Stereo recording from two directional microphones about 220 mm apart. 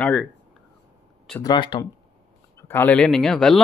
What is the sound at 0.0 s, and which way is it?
Speech, 5° left (ahead or behind).